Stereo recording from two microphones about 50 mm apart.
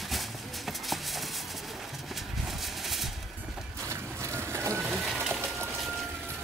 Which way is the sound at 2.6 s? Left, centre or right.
Centre.